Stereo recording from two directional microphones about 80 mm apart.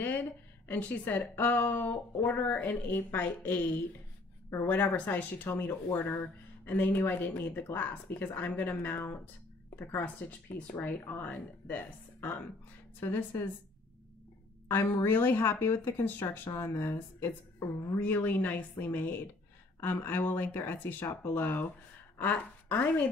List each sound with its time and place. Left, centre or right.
0.0 s a woman's voice: left
14.7 s a woman's voice: left